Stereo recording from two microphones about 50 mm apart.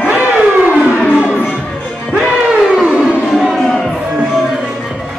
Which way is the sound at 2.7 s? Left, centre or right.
Centre.